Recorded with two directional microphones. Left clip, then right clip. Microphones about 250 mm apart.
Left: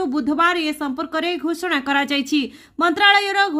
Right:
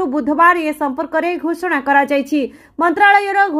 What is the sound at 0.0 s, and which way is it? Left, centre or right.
Speech, centre.